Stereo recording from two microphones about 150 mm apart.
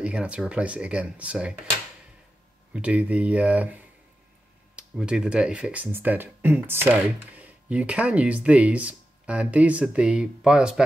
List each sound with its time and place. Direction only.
0.0 s speech: 5° right (ahead or behind)
2.7 s speech: 10° right (ahead or behind)